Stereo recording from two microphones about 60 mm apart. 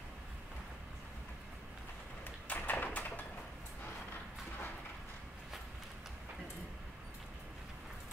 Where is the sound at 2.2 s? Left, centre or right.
Left.